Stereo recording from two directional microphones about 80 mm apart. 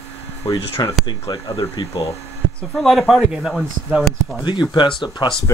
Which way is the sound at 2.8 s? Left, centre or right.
Centre.